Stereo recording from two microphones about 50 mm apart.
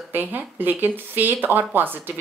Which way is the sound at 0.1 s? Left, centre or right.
Right.